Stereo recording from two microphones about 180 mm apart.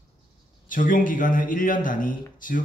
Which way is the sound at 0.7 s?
50° left (ahead or behind).